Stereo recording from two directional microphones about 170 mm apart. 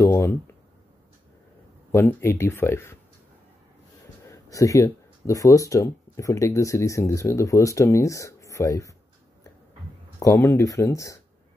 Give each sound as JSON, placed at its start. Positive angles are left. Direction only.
{"t": 0.0, "sound": "a sound", "side_deg": 15}
{"t": 1.9, "sound": "speech", "side_deg": 15}
{"t": 4.3, "sound": "speech", "side_deg": 20}
{"t": 10.1, "sound": "speech", "side_deg": 15}